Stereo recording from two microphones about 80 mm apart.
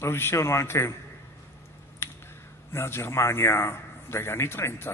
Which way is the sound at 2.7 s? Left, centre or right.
Left.